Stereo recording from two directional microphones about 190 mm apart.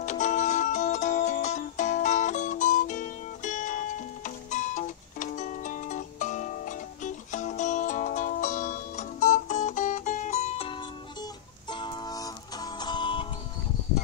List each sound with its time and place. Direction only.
0.0 s music: 40° left (ahead or behind)
11.7 s music: 20° left (ahead or behind)